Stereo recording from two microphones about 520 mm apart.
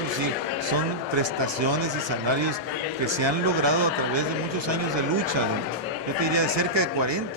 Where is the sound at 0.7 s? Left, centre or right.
Right.